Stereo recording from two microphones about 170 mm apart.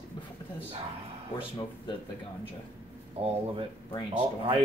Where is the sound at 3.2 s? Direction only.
35° right (ahead or behind).